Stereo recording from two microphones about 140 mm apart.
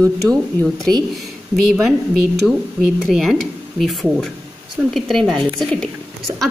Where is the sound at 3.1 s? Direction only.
Centre (ahead or behind).